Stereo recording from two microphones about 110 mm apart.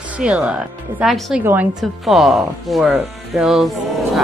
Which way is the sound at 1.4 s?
20° right (ahead or behind).